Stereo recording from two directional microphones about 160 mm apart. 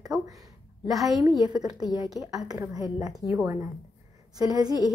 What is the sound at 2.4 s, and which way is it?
Speech, 20° right (ahead or behind).